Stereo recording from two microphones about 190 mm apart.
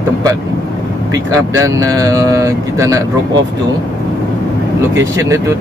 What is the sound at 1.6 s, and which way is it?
Speech, 20° right (ahead or behind).